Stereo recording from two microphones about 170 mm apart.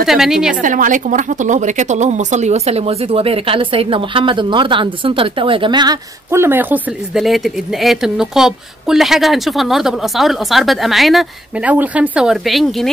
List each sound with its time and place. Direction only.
0.0 s a woman's voice: centre (ahead or behind)
0.6 s a woman's voice: 50° right (ahead or behind); by 6.8 s 10° right (ahead or behind)
7.2 s a woman's voice: centre (ahead or behind)